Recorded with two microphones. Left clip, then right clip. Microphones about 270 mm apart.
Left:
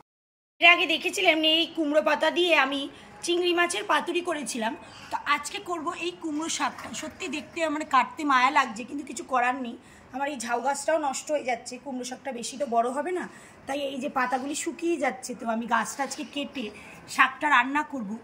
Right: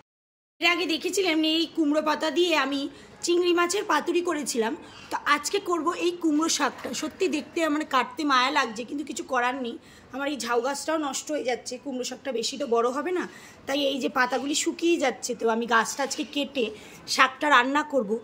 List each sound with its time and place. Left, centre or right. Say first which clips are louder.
0.6 s a woman's voice: left 5 dB; centre
6.2 s speech: right 4 dB; centre
7.5 s a woman's voice: left 3 dB; centre